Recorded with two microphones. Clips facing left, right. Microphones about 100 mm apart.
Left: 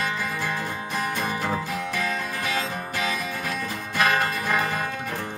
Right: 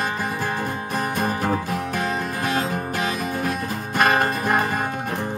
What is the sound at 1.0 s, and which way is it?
Music, 45° right (ahead or behind).